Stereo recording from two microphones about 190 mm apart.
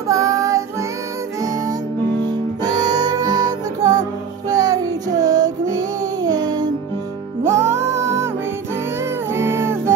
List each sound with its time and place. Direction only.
0.1 s child singing: 15° right (ahead or behind)
2.6 s music: 20° right (ahead or behind)
4.5 s child singing: 20° right (ahead or behind)
7.4 s music: 15° right (ahead or behind)
9.3 s music: 15° right (ahead or behind)